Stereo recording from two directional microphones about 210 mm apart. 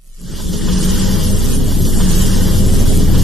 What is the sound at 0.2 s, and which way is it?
Vehicle, centre (ahead or behind).